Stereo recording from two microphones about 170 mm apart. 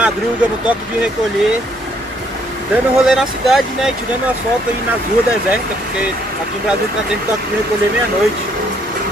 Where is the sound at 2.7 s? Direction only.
Centre (ahead or behind).